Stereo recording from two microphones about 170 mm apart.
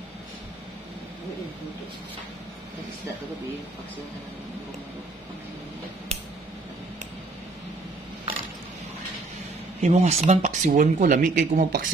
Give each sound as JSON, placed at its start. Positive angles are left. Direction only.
{"t": 9.8, "sound": "speech", "side_deg": -40}